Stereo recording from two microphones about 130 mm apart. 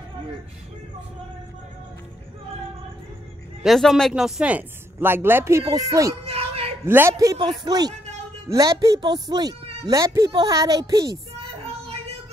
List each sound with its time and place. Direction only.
3.6 s speech: centre (ahead or behind); by 6.1 s 25° right (ahead or behind)
6.2 s a sound: 50° right (ahead or behind)
6.9 s speech: 20° right (ahead or behind)
11.6 s music: 50° right (ahead or behind)